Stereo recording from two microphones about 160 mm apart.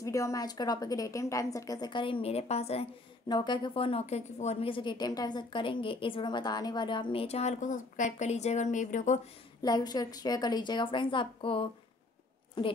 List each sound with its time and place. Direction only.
0.0 s a woman's voice: 20° left (ahead or behind); by 2.9 s 40° left (ahead or behind)
3.3 s a woman's voice: 25° left (ahead or behind); by 9.3 s 50° left (ahead or behind)
9.6 s a woman's voice: 25° left (ahead or behind)